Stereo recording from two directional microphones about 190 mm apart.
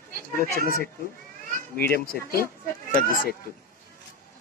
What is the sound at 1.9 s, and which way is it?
Speech, 50° left (ahead or behind).